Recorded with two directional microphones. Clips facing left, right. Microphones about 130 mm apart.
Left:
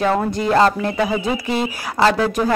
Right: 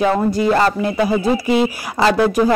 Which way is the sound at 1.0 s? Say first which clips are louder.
Right 4 dB; 35° right (ahead or behind).